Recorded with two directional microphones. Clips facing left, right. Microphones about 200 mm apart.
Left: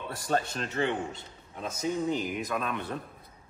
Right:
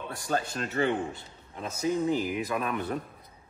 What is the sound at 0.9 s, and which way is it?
Speech, 60° right (ahead or behind).